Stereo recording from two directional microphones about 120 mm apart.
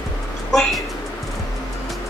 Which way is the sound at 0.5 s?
Centre (ahead or behind).